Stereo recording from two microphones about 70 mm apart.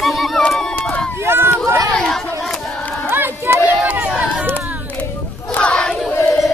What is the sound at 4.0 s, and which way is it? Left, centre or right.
Run, centre.